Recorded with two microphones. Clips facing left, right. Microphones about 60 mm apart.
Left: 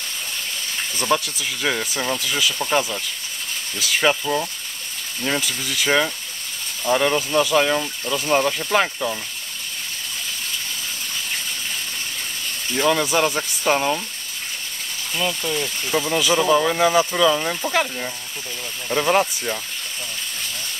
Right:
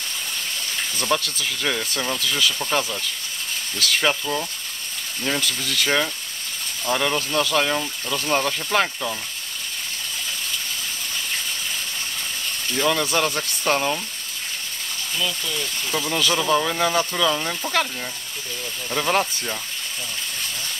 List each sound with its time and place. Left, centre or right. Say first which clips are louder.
0.9 s speech: left 3 dB; centre
12.7 s speech: left 3 dB; centre
15.1 s speech: left 4 dB; left
15.9 s speech: left 3 dB; centre